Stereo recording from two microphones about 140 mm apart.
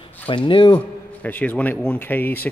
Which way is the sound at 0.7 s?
10° left (ahead or behind).